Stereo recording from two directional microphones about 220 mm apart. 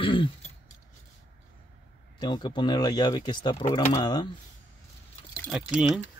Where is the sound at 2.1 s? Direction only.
20° left (ahead or behind).